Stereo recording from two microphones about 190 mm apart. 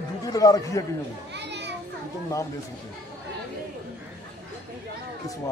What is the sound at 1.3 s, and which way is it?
Children playing, 65° right (ahead or behind).